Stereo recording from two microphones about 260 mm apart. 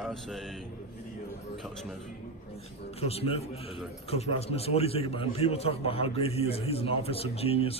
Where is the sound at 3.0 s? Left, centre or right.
Left.